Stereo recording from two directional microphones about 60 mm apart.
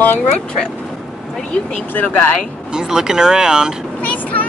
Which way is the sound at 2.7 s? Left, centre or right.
Centre.